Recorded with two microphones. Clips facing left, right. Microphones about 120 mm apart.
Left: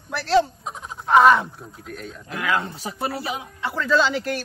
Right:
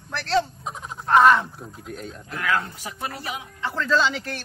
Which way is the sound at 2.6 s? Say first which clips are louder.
Left 5 dB; 35° left (ahead or behind).